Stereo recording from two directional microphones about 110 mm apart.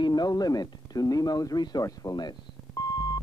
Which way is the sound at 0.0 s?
40° left (ahead or behind).